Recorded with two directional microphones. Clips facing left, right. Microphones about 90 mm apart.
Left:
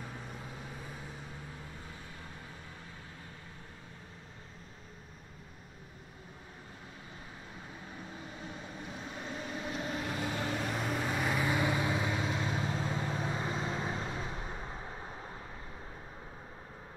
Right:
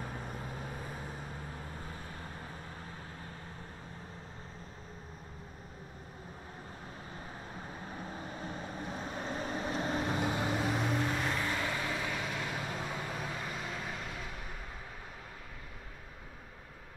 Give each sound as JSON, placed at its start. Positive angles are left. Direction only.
{"t": 0.0, "sound": "vehicle", "side_deg": -45}
{"t": 7.9, "sound": "vehicle", "side_deg": -40}
{"t": 10.7, "sound": "vehicle", "side_deg": 0}